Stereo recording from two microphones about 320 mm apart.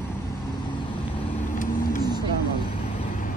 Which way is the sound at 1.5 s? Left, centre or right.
Left.